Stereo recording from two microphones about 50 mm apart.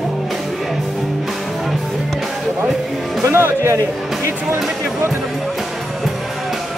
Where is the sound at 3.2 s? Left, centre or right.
Right.